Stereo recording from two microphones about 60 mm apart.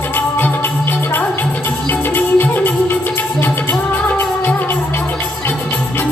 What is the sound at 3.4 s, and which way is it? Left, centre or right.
Music, left.